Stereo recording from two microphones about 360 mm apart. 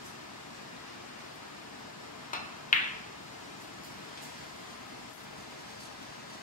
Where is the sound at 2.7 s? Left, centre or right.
Left.